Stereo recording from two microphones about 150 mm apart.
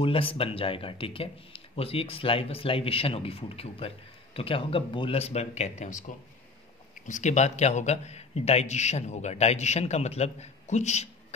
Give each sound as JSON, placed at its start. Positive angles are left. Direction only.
{"t": 0.0, "sound": "a man's voice", "side_deg": 35}